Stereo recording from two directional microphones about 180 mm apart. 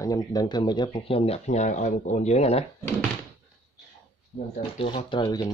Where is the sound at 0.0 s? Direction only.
20° left (ahead or behind); by 2.6 s 35° left (ahead or behind).